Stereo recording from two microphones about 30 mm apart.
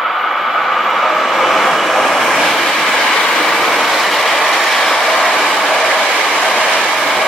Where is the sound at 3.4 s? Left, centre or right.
Centre.